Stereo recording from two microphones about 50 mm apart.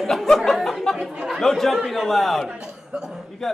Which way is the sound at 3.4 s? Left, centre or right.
Centre.